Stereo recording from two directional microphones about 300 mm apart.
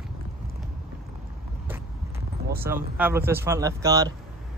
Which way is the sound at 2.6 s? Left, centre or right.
Centre.